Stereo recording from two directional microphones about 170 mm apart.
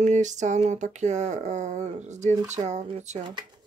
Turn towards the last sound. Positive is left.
turn(degrees=-25)  # may be behind; listen again after turning